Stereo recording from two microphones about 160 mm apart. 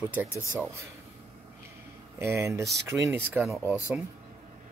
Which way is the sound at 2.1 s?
15° right (ahead or behind).